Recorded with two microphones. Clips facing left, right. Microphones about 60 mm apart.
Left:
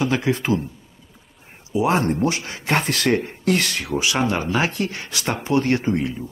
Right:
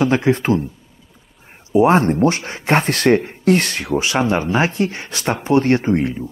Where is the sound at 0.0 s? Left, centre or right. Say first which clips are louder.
Right 5 dB; right.